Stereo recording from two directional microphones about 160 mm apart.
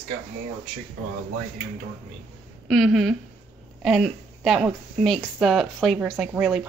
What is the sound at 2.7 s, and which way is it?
Chopping, centre (ahead or behind).